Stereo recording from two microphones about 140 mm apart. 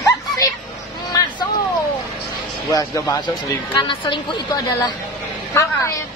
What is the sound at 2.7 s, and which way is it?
A woman's voice, 25° left (ahead or behind).